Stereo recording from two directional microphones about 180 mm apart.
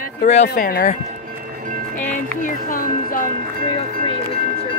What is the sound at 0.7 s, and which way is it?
Speech, 55° left (ahead or behind).